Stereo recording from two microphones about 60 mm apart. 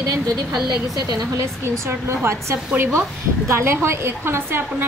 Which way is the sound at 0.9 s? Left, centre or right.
Right.